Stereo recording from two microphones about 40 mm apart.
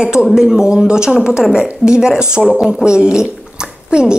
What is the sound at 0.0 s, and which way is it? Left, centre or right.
Speech, centre.